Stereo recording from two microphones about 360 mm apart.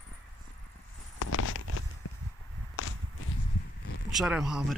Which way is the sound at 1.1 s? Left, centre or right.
Left.